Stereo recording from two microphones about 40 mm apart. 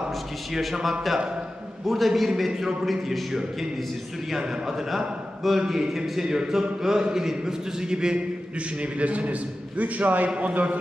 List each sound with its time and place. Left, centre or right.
0.5 s a man's voice: centre
1.9 s a man's voice: centre
8.9 s a man's voice: right